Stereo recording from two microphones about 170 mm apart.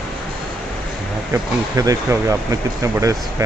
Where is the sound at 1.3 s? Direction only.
20° right (ahead or behind).